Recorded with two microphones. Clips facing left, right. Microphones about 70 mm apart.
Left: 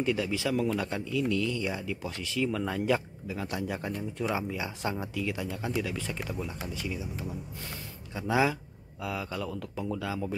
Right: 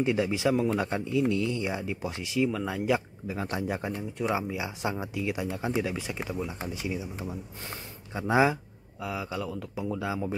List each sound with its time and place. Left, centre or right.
0.0 s speech: right
2.5 s speech: centre
3.3 s speech: right; by 6.5 s centre
6.6 s speech: right
9.0 s speech: centre
9.9 s speech: centre